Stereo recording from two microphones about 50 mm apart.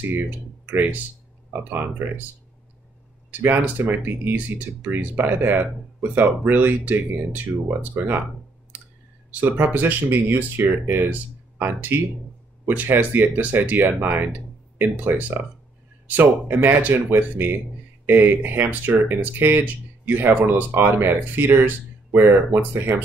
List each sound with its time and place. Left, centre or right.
0.0 s speech: right
3.3 s speech: right
9.7 s speech: right